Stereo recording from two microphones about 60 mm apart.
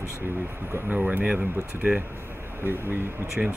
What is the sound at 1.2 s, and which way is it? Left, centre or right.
Speech, centre.